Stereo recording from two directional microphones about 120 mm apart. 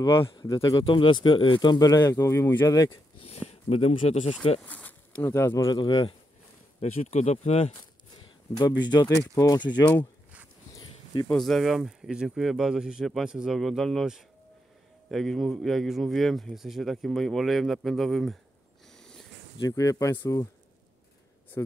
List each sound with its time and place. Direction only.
0.5 s speech: 30° left (ahead or behind)
0.8 s speech: 45° left (ahead or behind); by 2.9 s 30° left (ahead or behind)
3.3 s speech: 60° left (ahead or behind)
4.6 s speech: 15° left (ahead or behind)
5.7 s speech: 35° left (ahead or behind)
6.8 s speech: 70° left (ahead or behind)
8.2 s speech: 35° left (ahead or behind)
11.2 s speech: centre (ahead or behind)
19.6 s speech: 30° left (ahead or behind)
21.6 s speech: 25° left (ahead or behind)